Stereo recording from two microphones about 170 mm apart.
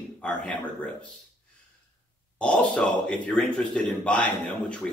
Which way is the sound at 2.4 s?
5° left (ahead or behind).